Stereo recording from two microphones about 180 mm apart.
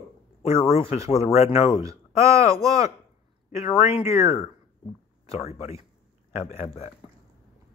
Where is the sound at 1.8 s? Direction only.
15° right (ahead or behind).